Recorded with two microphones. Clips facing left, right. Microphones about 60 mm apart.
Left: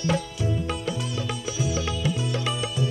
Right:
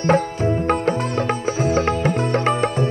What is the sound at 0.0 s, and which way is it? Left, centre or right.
Music, right.